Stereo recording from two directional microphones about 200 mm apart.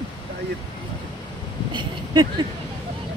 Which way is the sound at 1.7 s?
20° right (ahead or behind).